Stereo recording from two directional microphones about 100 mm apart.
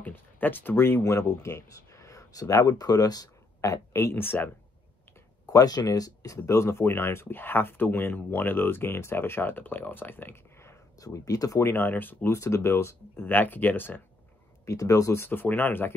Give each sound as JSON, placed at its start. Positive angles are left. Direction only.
{"t": 0.0, "sound": "speech", "side_deg": 20}
{"t": 5.5, "sound": "speech", "side_deg": 40}
{"t": 11.1, "sound": "speech", "side_deg": 35}
{"t": 11.7, "sound": "speech", "side_deg": 20}
{"t": 14.6, "sound": "speech", "side_deg": 30}
{"t": 15.2, "sound": "speech", "side_deg": 20}